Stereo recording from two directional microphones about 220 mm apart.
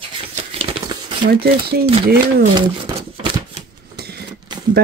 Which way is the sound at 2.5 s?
20° right (ahead or behind).